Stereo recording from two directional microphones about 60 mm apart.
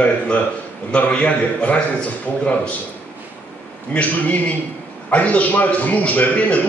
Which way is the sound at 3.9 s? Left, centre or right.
Left.